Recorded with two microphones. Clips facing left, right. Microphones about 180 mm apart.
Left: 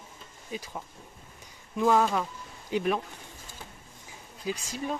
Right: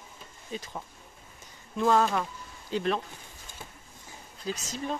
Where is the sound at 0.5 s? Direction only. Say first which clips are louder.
Even; 10° left (ahead or behind).